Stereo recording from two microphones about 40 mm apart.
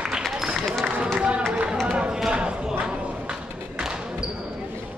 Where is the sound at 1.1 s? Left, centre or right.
Right.